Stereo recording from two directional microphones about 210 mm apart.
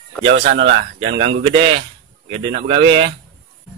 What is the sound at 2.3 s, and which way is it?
Speech, 25° right (ahead or behind).